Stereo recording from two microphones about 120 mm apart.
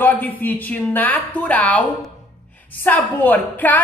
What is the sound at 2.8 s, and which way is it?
Speech, 15° left (ahead or behind).